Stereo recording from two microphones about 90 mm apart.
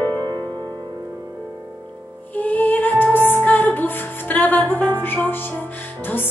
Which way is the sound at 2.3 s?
20° left (ahead or behind).